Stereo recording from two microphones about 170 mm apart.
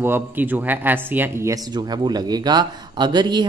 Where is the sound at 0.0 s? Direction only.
10° right (ahead or behind).